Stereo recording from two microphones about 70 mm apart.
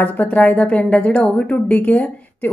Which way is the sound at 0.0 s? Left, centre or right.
Left.